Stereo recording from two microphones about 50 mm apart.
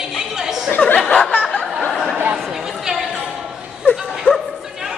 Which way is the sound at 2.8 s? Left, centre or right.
Centre.